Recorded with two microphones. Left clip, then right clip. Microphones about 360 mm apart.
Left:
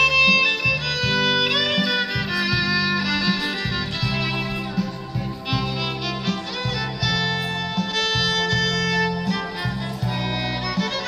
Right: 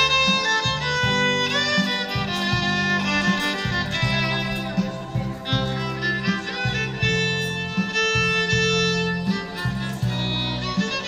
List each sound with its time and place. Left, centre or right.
0.0 s music: right
8.3 s music: centre